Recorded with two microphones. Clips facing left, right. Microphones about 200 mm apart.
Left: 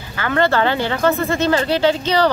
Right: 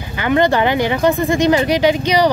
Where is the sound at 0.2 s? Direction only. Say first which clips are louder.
Right 3 dB; 15° right (ahead or behind).